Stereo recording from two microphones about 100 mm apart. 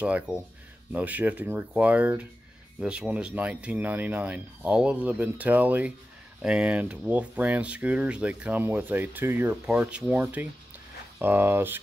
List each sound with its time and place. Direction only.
0.0 s speech: 15° right (ahead or behind)
9.7 s speech: 10° right (ahead or behind)